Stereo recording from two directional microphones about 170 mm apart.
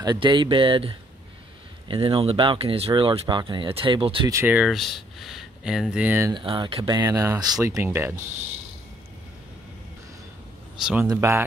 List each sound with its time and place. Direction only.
0.0 s speech: 25° right (ahead or behind)
4.3 s speech: 10° right (ahead or behind)
6.3 s speech: 30° right (ahead or behind)
10.8 s speech: 5° right (ahead or behind)
11.1 s speech: 15° right (ahead or behind)